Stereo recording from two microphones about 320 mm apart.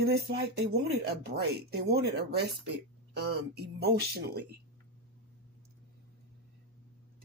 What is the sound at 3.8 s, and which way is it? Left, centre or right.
Speech, right.